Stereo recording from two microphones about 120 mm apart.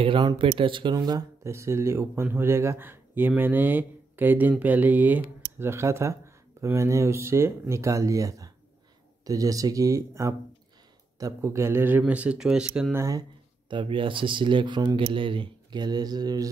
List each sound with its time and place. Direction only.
0.6 s speech: 45° right (ahead or behind)
0.9 s speech: 30° right (ahead or behind); by 12.9 s 5° right (ahead or behind)
12.9 s speech: 25° right (ahead or behind)
13.7 s speech: 45° right (ahead or behind)